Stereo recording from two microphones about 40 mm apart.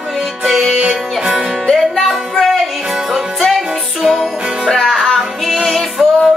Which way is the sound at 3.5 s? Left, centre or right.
Centre.